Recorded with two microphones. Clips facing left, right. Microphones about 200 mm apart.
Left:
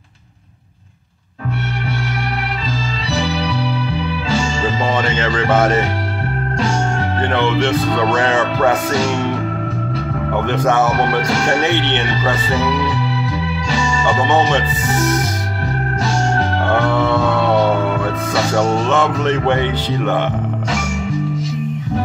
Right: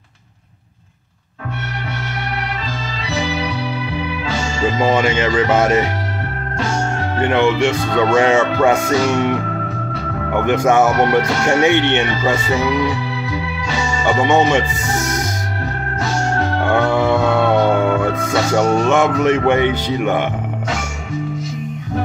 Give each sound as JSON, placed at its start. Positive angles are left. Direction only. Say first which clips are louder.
{"t": 4.8, "sound": "speech", "louder": "right 4 dB", "side_deg": -10}
{"t": 7.2, "sound": "speech", "louder": "right 3 dB", "side_deg": -10}
{"t": 10.3, "sound": "speech", "louder": "right 3 dB", "side_deg": -10}
{"t": 11.9, "sound": "speech", "louder": "right 2 dB", "side_deg": -10}
{"t": 14.2, "sound": "speech", "louder": "right 2 dB", "side_deg": -10}
{"t": 16.9, "sound": "music", "louder": "right 1 dB", "side_deg": -10}
{"t": 18.5, "sound": "speech", "louder": "right 2 dB", "side_deg": -10}